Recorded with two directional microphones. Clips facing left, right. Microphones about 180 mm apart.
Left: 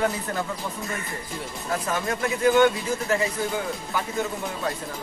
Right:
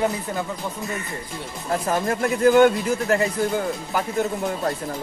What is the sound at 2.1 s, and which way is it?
Speech, 45° right (ahead or behind).